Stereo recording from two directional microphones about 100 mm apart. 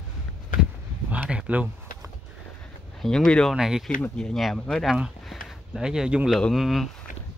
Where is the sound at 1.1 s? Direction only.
15° right (ahead or behind).